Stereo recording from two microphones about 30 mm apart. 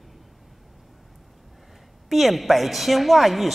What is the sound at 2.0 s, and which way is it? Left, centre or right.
A woman's voice, centre.